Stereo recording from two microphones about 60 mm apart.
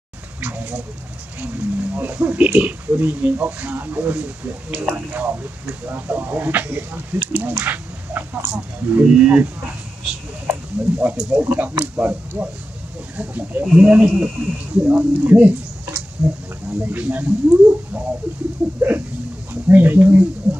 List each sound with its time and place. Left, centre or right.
0.4 s speech: right
9.0 s speech: right
16.2 s speech: right